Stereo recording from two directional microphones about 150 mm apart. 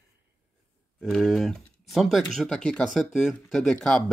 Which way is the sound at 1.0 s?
Centre (ahead or behind).